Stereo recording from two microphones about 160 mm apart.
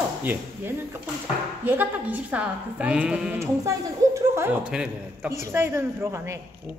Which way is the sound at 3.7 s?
20° right (ahead or behind).